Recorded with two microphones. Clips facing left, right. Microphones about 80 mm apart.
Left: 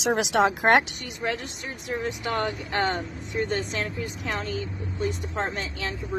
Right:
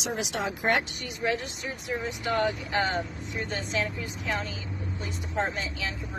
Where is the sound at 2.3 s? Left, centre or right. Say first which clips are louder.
Right 3 dB; left.